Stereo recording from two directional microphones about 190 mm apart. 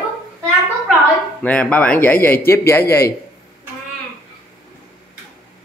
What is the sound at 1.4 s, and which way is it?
Speech, 5° left (ahead or behind).